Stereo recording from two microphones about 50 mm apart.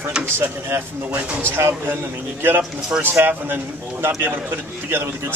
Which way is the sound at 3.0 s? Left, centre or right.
Right.